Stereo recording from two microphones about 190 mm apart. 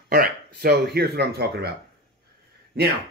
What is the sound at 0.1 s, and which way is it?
Speech, 55° right (ahead or behind).